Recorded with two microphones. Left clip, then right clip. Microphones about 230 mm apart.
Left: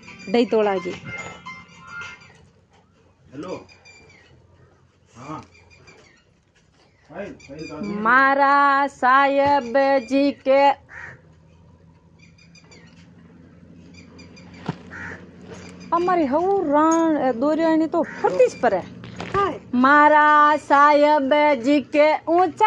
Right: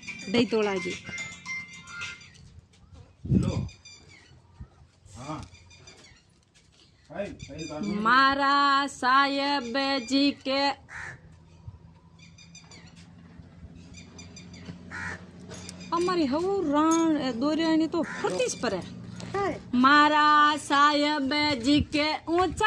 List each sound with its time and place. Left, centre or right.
0.3 s speech: centre
7.1 s speech: right
8.0 s speech: centre
15.9 s speech: centre